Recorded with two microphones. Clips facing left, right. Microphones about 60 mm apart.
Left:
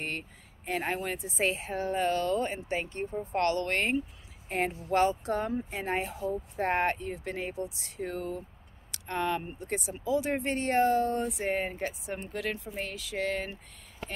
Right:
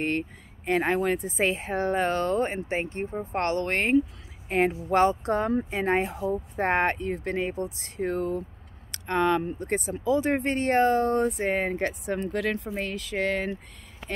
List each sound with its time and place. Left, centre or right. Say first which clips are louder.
0.0 s speech: right 9 dB; right
4.5 s speech: right 7 dB; right
4.9 s speech: right 4 dB; right
5.5 s speech: right 7 dB; right
8.9 s speech: right 7 dB; right
9.6 s speech: right 6 dB; right
11.6 s speech: right 6 dB; right